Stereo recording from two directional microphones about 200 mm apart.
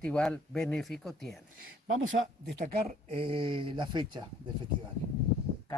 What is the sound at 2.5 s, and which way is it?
Speech, 55° right (ahead or behind).